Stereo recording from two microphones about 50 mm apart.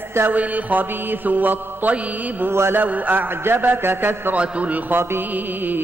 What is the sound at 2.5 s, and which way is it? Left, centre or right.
Speech, right.